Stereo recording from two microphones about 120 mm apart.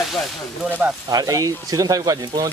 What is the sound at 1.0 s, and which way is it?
Speech, 30° right (ahead or behind).